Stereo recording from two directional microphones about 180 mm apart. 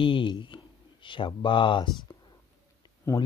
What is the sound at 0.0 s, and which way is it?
Speech, 30° left (ahead or behind).